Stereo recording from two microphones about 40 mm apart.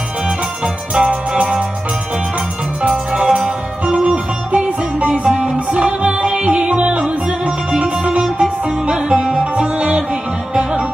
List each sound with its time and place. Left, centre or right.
0.9 s music: centre
3.1 s music: centre